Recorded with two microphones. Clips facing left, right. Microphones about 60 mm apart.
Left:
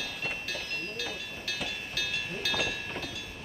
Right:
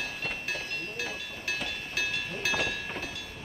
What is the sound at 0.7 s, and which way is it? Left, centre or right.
Train, centre.